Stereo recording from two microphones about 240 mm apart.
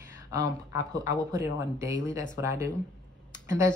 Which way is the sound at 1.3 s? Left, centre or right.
Centre.